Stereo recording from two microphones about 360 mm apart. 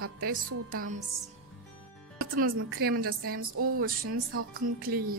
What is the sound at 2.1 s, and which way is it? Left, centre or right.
A woman's voice, right.